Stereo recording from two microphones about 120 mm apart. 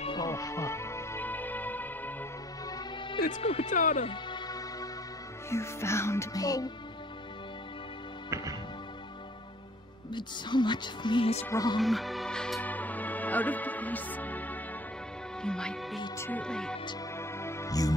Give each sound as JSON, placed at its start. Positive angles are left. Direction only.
{"t": 0.3, "sound": "music", "side_deg": 25}
{"t": 2.6, "sound": "music", "side_deg": 30}
{"t": 3.3, "sound": "speech", "side_deg": 90}
{"t": 4.0, "sound": "music", "side_deg": 40}
{"t": 8.3, "sound": "music", "side_deg": -25}
{"t": 10.1, "sound": "speech", "side_deg": 40}
{"t": 11.8, "sound": "music", "side_deg": 0}
{"t": 15.4, "sound": "speech", "side_deg": 5}
{"t": 17.2, "sound": "music", "side_deg": 20}